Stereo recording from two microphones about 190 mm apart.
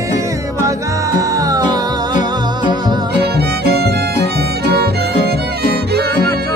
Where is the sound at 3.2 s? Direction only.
60° right (ahead or behind).